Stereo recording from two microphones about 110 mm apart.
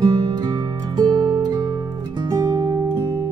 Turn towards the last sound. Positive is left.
turn(degrees=-30)  # may be behind; listen again after turning